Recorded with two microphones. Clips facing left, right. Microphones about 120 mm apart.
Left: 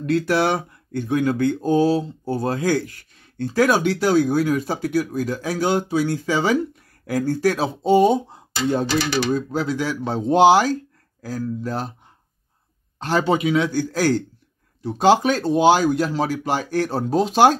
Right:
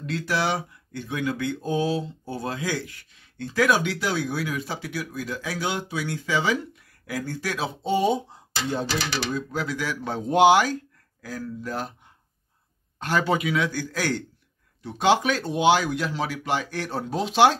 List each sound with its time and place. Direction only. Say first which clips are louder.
0.0 s speech: left 7 dB; 55° left (ahead or behind)
9.3 s speech: left 6 dB; 30° left (ahead or behind)
13.0 s a man's voice: left 4 dB; 30° left (ahead or behind)